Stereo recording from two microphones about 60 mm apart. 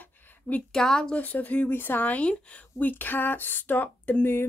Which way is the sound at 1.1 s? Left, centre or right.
Left.